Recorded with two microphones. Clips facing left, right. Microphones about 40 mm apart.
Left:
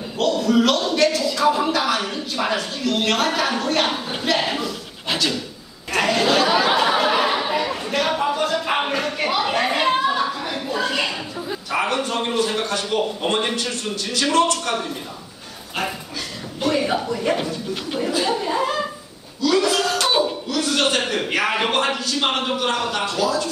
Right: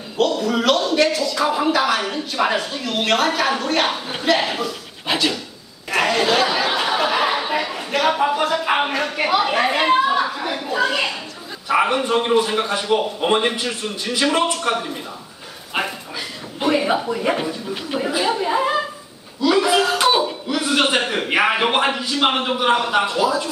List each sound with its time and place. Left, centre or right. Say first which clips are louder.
0.2 s a sound: left 1 dB; centre
1.3 s a woman's voice: even; centre
5.0 s speech: right 3 dB; centre
5.9 s a sound: right 1 dB; centre
11.7 s a man's voice: right 5 dB; centre
16.5 s a man's voice: right 2 dB; centre